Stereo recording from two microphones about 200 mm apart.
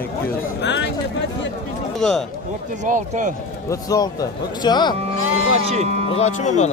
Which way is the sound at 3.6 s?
20° left (ahead or behind).